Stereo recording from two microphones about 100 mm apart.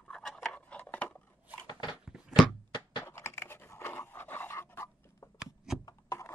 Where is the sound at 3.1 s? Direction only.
25° left (ahead or behind).